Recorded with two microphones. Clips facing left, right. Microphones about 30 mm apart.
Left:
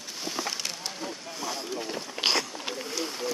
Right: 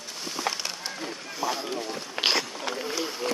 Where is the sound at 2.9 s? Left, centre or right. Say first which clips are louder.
Right 2 dB; centre.